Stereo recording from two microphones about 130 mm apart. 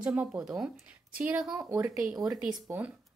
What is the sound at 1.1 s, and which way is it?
Speech, 15° right (ahead or behind).